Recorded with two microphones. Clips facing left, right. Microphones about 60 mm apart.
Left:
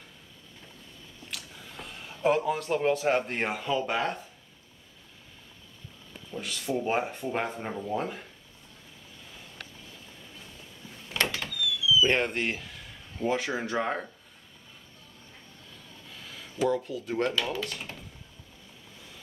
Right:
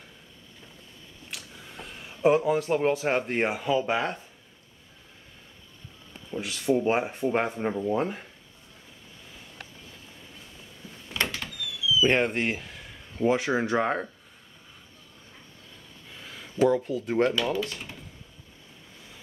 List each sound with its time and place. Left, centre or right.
1.3 s a sound: centre
2.3 s speech: centre
6.3 s a sound: centre
6.8 s speech: centre
11.6 s speech: centre
16.6 s speech: centre
16.9 s speech: right
17.4 s speech: centre